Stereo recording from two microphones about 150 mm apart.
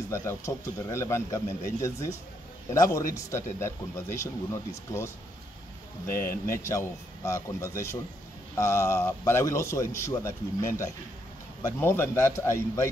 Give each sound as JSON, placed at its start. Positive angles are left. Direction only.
{"t": 0.1, "sound": "a man's voice", "side_deg": 20}
{"t": 6.0, "sound": "a man's voice", "side_deg": 20}